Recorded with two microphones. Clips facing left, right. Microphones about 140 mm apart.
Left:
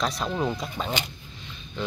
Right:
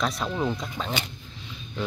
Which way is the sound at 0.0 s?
5° left (ahead or behind).